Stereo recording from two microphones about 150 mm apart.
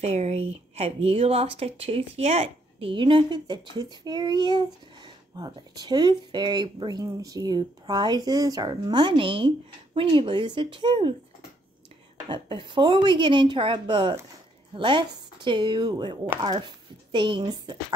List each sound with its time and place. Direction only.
0.0 s speech: 45° right (ahead or behind)
12.3 s speech: 35° right (ahead or behind)